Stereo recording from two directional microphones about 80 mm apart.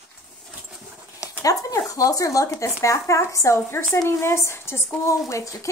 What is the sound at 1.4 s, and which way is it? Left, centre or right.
A woman's voice, left.